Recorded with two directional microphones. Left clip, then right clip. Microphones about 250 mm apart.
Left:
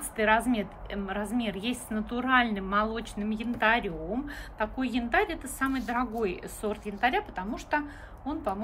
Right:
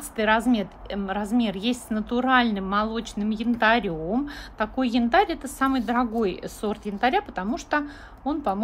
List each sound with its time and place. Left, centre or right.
0.1 s a woman's voice: centre